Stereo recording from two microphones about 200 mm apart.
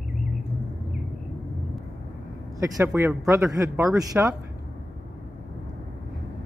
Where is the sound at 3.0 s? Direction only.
15° right (ahead or behind).